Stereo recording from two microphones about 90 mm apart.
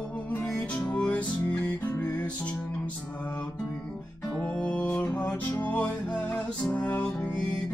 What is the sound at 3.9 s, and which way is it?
Music, 5° left (ahead or behind).